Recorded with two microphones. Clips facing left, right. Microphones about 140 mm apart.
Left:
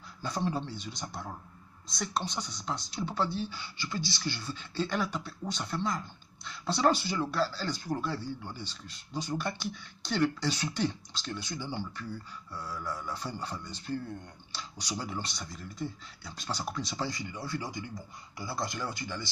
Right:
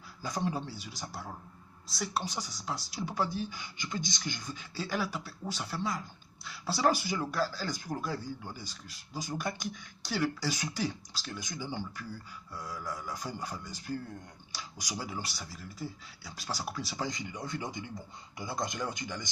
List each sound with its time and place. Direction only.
0.2 s speech: 10° right (ahead or behind)
17.1 s speech: 20° right (ahead or behind)